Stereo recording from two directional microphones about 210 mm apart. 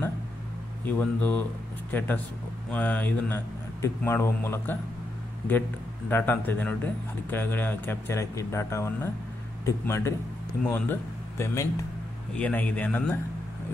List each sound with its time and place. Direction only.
0.9 s speech: 10° left (ahead or behind)
6.0 s speech: 10° left (ahead or behind)